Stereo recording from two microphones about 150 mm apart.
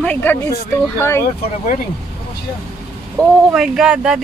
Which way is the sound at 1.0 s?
15° left (ahead or behind).